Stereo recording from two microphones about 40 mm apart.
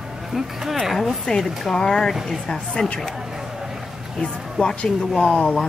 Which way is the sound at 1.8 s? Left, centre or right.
Centre.